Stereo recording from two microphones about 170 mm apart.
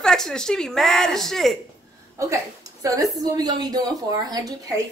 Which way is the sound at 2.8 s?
20° right (ahead or behind).